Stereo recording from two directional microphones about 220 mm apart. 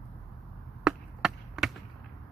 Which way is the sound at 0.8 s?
5° right (ahead or behind).